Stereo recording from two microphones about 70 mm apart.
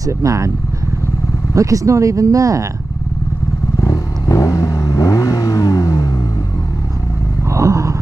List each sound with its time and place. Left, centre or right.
0.0 s speech: right
1.5 s speech: right
3.8 s vehicle: left
7.4 s a sound: right